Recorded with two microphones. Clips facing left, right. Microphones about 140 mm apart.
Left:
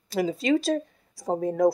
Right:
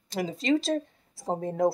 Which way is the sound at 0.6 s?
25° right (ahead or behind).